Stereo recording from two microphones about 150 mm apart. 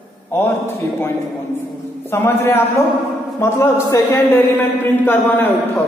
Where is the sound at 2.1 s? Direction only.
15° left (ahead or behind).